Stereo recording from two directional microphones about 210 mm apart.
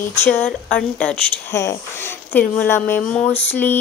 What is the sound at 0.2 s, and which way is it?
Speech, 10° left (ahead or behind).